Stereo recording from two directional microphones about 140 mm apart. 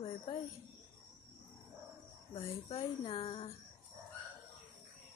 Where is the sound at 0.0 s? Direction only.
45° left (ahead or behind).